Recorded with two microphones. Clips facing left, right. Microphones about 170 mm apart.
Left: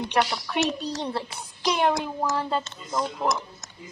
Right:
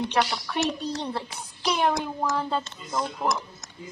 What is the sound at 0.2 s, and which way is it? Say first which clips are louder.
Speech: left 3 dB; 5° left (ahead or behind).